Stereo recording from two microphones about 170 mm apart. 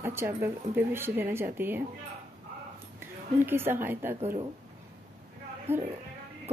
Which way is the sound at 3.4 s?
15° right (ahead or behind).